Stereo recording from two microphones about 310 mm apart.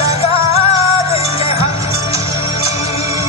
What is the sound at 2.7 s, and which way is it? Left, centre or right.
Music, left.